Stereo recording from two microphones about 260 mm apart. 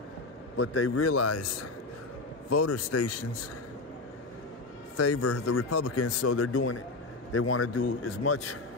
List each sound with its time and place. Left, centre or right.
0.6 s speech: left
4.9 s speech: left